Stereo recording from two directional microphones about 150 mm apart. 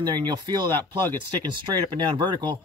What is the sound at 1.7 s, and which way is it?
Speech, 30° right (ahead or behind).